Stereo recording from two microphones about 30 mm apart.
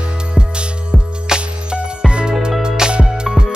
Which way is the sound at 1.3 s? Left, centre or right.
Right.